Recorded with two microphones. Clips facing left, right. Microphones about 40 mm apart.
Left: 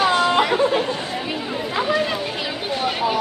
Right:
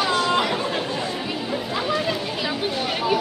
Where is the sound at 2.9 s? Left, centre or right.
Centre.